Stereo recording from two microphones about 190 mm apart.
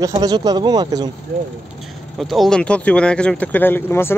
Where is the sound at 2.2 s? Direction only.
Centre (ahead or behind).